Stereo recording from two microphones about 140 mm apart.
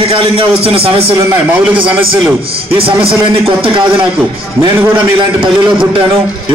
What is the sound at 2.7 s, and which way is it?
A man's voice, 40° right (ahead or behind).